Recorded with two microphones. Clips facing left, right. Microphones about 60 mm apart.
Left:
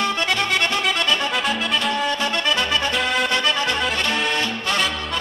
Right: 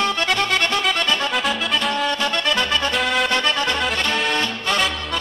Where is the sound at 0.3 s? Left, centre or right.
Centre.